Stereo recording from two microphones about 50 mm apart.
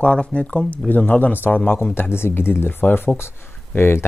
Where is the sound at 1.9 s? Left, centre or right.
Left.